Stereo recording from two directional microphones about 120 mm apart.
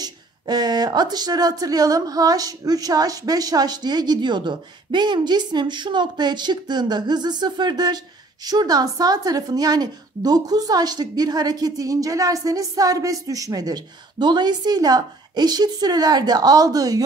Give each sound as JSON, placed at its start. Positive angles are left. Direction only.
{"t": 0.0, "sound": "a woman's voice", "side_deg": -35}